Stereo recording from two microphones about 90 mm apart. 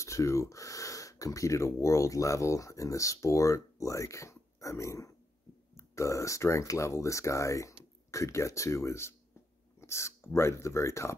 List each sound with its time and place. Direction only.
0.0 s speech: 35° left (ahead or behind)